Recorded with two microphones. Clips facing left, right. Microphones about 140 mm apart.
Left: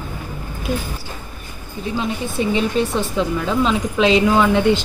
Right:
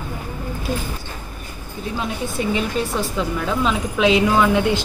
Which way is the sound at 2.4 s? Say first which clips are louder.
Left 2 dB; 5° right (ahead or behind).